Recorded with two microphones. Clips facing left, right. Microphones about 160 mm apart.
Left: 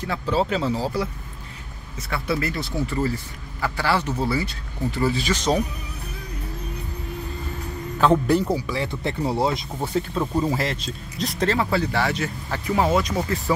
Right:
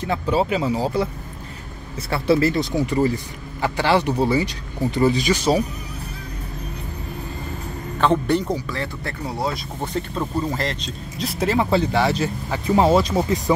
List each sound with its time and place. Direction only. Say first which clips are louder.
0.0 s speech: right 3 dB; 15° right (ahead or behind)
2.0 s speech: right 7 dB; 30° right (ahead or behind); by 5.6 s 10° right (ahead or behind)
8.0 s speech: left 1 dB; 5° left (ahead or behind); by 9.7 s 25° left (ahead or behind)
9.8 s speech: left 1 dB; 5° left (ahead or behind)
11.7 s speech: right 4 dB; 20° right (ahead or behind)